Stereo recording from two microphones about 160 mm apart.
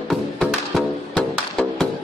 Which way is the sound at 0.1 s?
Centre (ahead or behind).